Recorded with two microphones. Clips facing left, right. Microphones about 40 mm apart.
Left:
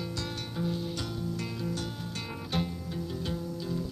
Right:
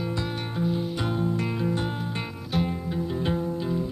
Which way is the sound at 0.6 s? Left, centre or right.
Right.